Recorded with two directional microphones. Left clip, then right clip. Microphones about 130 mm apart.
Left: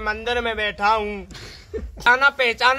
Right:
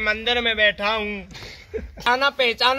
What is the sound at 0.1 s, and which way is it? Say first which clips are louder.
A man's voice: even; 40° left (ahead or behind).